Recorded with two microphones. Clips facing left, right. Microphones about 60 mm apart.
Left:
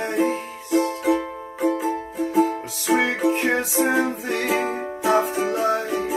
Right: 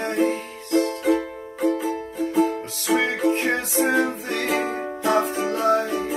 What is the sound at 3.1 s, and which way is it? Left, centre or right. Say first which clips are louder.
Music: even; centre.